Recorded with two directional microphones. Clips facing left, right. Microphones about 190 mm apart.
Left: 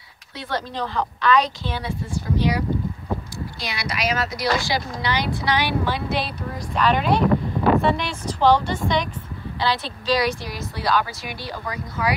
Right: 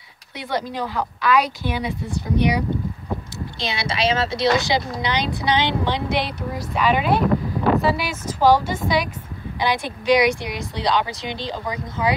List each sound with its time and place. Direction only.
0.4 s a woman's voice: 15° right (ahead or behind)
6.7 s a woman's voice: 10° right (ahead or behind)